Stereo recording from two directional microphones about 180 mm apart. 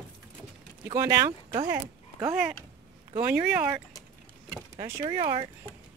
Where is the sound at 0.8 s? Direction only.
15° right (ahead or behind).